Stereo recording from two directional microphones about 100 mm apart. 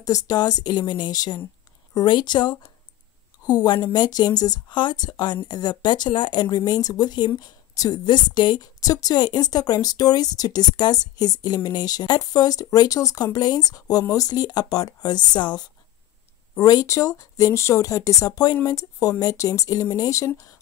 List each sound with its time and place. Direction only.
0.0 s speech: 40° left (ahead or behind)
16.5 s speech: 35° left (ahead or behind)